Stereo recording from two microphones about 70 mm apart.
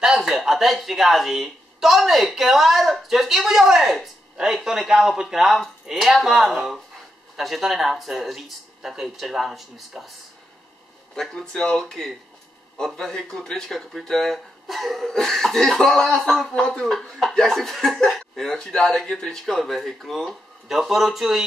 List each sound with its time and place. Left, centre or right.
0.0 s speech: centre
11.1 s speech: centre